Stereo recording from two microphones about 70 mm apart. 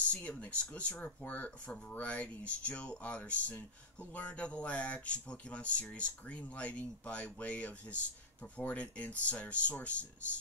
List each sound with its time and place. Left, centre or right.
0.0 s speech: centre